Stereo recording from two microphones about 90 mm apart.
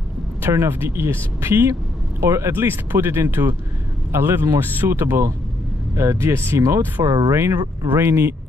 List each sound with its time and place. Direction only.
0.4 s speech: 30° right (ahead or behind)
7.0 s speech: 50° right (ahead or behind)
7.2 s speech: 30° right (ahead or behind)
7.5 s speech: 45° right (ahead or behind)
7.9 s speech: 25° right (ahead or behind)